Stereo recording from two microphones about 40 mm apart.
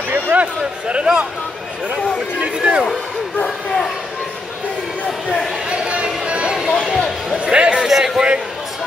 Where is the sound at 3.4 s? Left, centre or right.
Centre.